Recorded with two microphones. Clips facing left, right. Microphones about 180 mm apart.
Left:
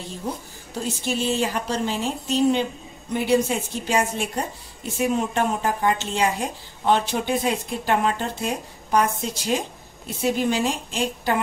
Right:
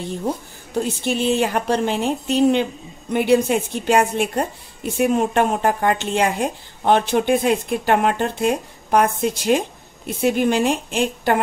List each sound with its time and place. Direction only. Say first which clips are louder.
1.0 s speech: right 3 dB; 60° right (ahead or behind)